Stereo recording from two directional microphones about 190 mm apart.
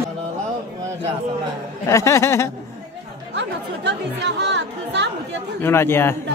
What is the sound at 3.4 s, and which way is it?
Speech, 65° right (ahead or behind).